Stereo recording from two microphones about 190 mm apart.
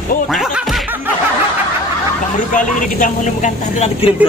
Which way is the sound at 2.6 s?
45° left (ahead or behind).